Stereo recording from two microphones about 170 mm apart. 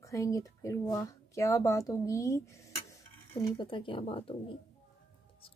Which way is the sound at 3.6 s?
30° left (ahead or behind).